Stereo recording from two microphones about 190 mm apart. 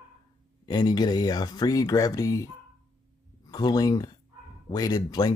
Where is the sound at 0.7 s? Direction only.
20° left (ahead or behind).